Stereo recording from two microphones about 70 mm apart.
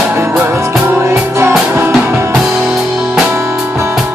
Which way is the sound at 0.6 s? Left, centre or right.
Right.